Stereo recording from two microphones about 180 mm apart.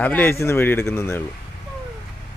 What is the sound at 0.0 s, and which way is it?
A man's voice, 10° left (ahead or behind).